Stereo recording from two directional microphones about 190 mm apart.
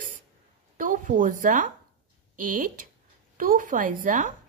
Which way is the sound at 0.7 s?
45° right (ahead or behind).